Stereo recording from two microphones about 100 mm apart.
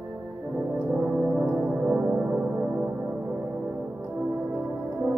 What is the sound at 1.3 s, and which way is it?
Music, 10° right (ahead or behind).